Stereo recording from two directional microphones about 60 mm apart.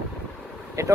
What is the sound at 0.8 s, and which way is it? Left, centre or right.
Speech, right.